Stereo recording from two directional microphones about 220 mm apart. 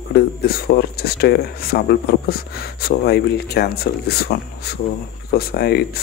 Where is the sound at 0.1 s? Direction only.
45° left (ahead or behind).